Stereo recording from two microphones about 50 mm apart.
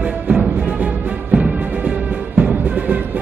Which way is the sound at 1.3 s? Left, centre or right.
Right.